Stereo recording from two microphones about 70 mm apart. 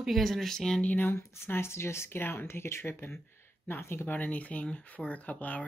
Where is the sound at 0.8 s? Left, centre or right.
Left.